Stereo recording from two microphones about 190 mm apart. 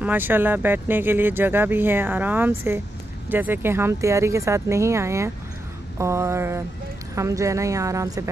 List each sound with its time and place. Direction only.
0.0 s speech: 10° right (ahead or behind)